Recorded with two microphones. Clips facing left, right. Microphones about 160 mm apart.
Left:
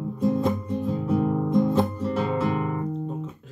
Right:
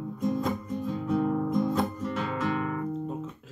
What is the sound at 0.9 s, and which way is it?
Music, 10° left (ahead or behind).